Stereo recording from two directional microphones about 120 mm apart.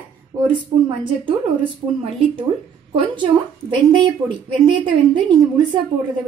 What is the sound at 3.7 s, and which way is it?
A woman's voice, 40° right (ahead or behind).